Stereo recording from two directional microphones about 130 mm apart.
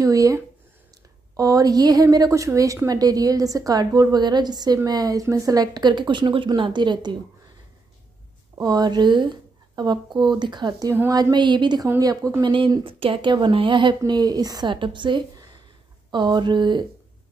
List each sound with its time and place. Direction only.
0.0 s a woman's voice: 25° right (ahead or behind)
8.5 s speech: 30° right (ahead or behind)
10.9 s speech: 25° right (ahead or behind)